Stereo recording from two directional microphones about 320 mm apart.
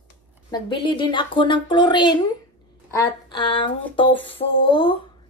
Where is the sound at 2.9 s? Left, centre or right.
Centre.